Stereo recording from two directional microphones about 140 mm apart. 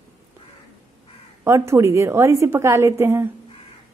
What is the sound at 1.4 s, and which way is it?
A woman's voice, 20° right (ahead or behind).